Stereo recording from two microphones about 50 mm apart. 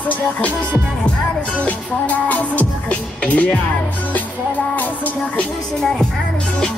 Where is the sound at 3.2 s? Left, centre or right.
Left.